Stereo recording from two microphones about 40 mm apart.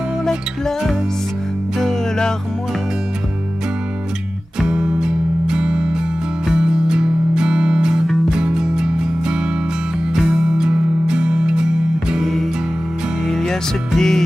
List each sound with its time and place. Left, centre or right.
1.8 s music: centre
4.6 s music: right
11.1 s music: right
12.2 s music: centre